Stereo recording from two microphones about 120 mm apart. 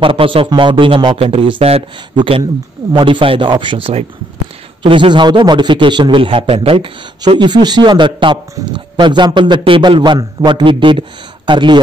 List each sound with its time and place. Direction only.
0.0 s a man's voice: 45° right (ahead or behind)